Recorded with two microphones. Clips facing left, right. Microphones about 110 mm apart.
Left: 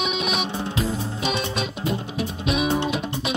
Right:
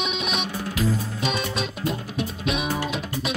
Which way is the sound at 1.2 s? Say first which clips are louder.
Left 1 dB; centre (ahead or behind).